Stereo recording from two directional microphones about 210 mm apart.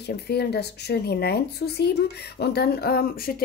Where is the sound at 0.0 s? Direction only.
50° left (ahead or behind).